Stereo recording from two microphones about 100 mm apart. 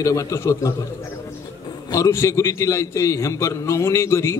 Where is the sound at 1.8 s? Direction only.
30° left (ahead or behind).